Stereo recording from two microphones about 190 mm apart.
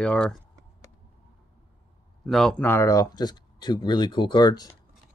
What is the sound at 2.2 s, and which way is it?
Speech, centre (ahead or behind).